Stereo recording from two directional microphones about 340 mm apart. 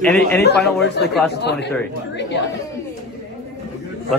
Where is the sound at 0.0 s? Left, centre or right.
Centre.